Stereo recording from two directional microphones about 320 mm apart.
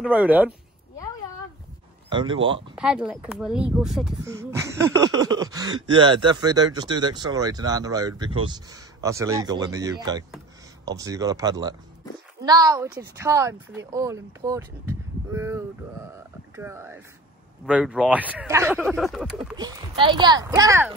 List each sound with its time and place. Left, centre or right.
0.0 s speech: centre
2.0 s speech: centre
2.7 s speech: centre
19.5 s speech: centre